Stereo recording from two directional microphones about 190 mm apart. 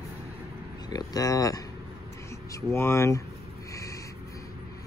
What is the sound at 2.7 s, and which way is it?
Speech, 15° left (ahead or behind).